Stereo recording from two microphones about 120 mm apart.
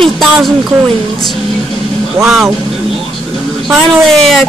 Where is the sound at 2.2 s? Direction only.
Centre (ahead or behind).